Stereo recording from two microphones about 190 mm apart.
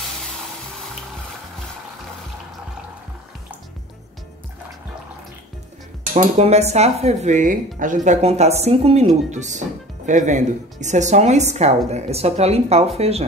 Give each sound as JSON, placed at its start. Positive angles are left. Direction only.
{"t": 6.1, "sound": "speech", "side_deg": -35}